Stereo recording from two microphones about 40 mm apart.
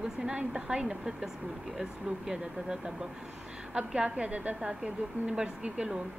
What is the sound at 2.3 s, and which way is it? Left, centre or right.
Speech, centre.